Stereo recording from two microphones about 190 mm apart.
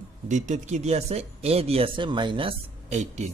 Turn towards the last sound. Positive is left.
turn(degrees=-40)  # may be behind; listen again after turning